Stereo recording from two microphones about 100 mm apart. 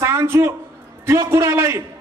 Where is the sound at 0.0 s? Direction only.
25° right (ahead or behind).